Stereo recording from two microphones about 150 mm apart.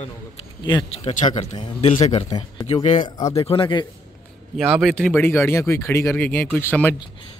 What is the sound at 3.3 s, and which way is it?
Speech, 35° left (ahead or behind).